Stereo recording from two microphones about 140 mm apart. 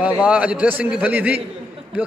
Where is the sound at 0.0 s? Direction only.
10° right (ahead or behind).